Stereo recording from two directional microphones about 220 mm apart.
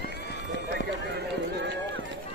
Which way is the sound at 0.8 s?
55° right (ahead or behind).